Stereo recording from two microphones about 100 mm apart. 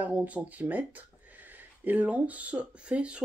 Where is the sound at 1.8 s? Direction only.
15° right (ahead or behind).